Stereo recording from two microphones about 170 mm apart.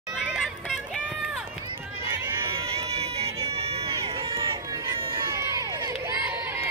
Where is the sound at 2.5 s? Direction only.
35° right (ahead or behind).